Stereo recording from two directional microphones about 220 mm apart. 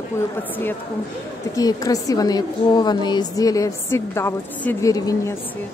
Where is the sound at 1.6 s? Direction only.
15° left (ahead or behind).